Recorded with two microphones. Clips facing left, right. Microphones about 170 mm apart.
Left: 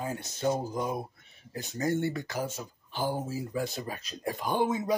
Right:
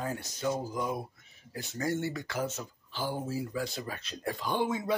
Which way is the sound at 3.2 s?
20° left (ahead or behind).